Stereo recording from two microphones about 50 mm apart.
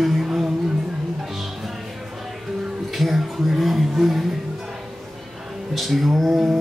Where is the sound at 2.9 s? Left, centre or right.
Centre.